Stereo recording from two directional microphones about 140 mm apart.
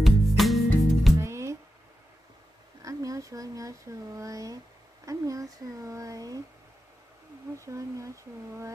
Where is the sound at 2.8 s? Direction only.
25° right (ahead or behind).